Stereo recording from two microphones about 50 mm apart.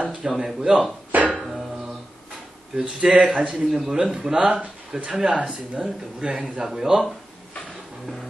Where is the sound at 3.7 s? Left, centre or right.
Centre; by 6.6 s right.